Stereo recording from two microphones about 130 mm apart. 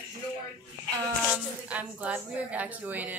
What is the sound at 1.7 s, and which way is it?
Speech, 10° right (ahead or behind).